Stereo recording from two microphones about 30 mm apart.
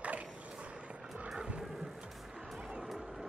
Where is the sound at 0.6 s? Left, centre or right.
Right.